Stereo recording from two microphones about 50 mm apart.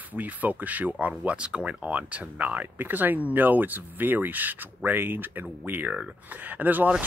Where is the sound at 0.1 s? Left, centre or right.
Right.